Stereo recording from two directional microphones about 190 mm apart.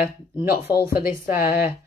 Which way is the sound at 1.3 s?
10° right (ahead or behind).